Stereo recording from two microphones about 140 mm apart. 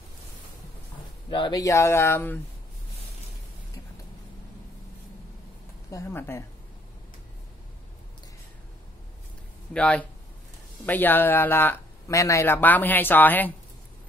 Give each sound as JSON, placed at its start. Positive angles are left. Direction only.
{"t": 1.3, "sound": "speech", "side_deg": 30}
{"t": 5.9, "sound": "speech", "side_deg": 20}
{"t": 9.8, "sound": "speech", "side_deg": 10}